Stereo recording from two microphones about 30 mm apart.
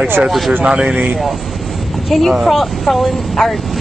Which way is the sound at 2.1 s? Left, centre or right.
Centre.